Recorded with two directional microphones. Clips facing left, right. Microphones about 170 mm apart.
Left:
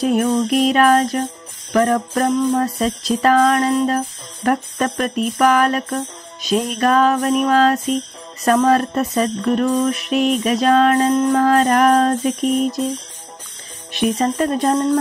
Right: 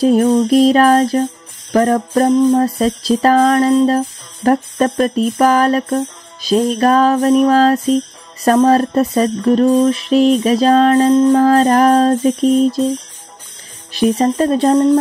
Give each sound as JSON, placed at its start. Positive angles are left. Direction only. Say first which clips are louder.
{"t": 0.0, "sound": "music", "louder": "right 5 dB", "side_deg": -30}
{"t": 13.9, "sound": "speech", "louder": "right 4 dB", "side_deg": -35}